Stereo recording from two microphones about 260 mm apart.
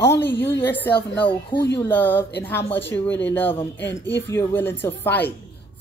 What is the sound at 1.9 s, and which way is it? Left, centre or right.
Speech, centre.